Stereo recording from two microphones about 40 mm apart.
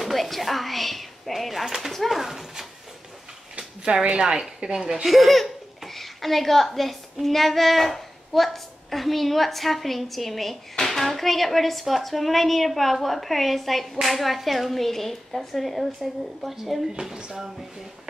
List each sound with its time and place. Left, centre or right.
0.0 s a woman's voice: centre
3.5 s speech: right
5.0 s a child's voice: centre
17.0 s speech: centre